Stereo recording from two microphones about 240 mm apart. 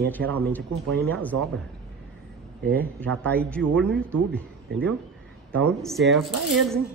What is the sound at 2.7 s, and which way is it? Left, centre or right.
Speech, centre.